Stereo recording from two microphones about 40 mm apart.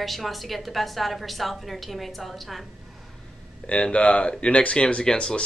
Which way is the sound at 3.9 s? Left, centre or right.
Left.